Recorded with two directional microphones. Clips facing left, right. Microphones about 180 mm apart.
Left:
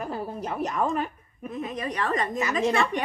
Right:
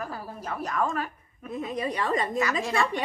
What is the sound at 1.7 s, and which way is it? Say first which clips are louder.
Speech: right 1 dB; 10° right (ahead or behind).